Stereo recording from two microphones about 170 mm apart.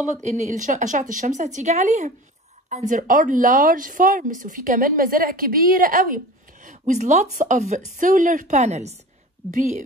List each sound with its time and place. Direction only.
0.1 s speech: 45° right (ahead or behind)